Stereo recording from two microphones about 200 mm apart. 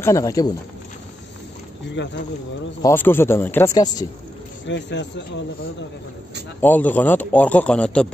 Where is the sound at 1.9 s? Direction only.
60° left (ahead or behind).